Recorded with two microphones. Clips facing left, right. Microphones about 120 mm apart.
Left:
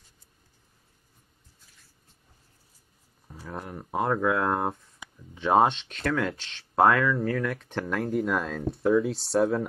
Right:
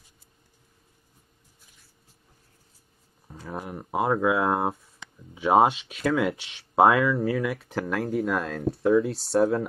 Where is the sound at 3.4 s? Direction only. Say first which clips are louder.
Right 2 dB; 10° right (ahead or behind).